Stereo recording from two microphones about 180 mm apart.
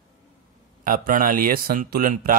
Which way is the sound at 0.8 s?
50° right (ahead or behind).